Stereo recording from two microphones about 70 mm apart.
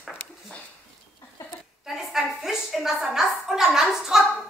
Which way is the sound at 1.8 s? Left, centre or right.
Centre.